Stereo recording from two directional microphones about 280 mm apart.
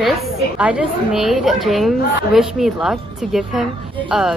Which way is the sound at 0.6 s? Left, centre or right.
Centre.